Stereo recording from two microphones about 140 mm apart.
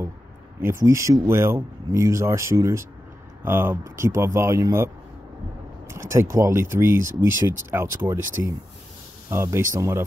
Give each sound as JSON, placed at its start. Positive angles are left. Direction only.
{"t": 0.6, "sound": "speech", "side_deg": -20}